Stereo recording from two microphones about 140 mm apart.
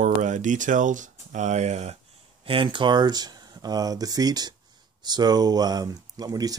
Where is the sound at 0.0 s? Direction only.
60° right (ahead or behind).